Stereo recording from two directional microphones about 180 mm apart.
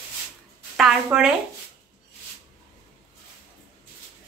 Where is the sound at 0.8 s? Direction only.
5° right (ahead or behind).